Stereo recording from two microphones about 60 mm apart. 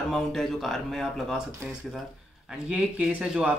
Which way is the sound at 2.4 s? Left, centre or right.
Centre.